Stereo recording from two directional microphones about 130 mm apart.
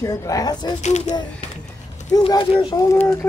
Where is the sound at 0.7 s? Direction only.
60° left (ahead or behind).